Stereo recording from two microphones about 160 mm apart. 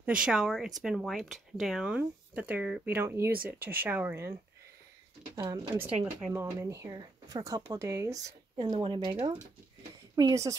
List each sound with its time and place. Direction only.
0.0 s speech: 5° right (ahead or behind); by 5.7 s 25° right (ahead or behind)
6.2 s speech: 15° right (ahead or behind)
8.5 s speech: 35° right (ahead or behind)